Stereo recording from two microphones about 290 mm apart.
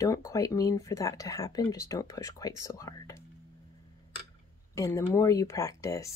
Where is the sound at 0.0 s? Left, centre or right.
Centre.